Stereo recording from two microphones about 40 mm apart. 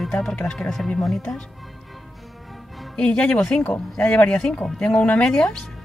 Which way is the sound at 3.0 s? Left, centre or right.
Left.